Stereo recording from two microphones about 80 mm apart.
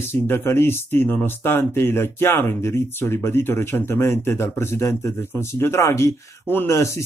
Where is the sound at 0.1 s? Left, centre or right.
Left.